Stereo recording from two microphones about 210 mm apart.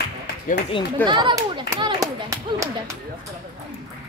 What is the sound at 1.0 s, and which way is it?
Clapping, 20° right (ahead or behind).